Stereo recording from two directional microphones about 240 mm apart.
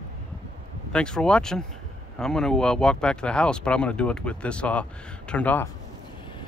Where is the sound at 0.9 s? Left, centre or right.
Centre.